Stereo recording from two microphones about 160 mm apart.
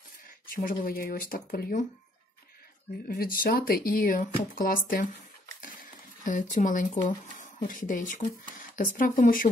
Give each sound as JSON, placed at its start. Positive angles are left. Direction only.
{"t": 0.5, "sound": "speech", "side_deg": 60}
{"t": 3.1, "sound": "speech", "side_deg": 65}
{"t": 6.2, "sound": "speech", "side_deg": 50}